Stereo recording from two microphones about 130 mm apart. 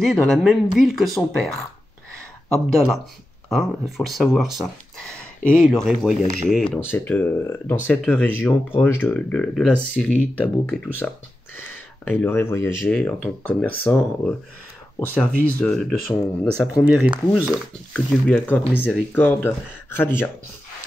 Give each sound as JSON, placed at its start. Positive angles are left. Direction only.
{"t": 0.0, "sound": "speech", "side_deg": 5}
{"t": 6.9, "sound": "speech", "side_deg": 15}
{"t": 10.1, "sound": "speech", "side_deg": -15}
{"t": 10.7, "sound": "speech", "side_deg": 15}
{"t": 16.7, "sound": "speech", "side_deg": -5}
{"t": 17.9, "sound": "speech", "side_deg": 10}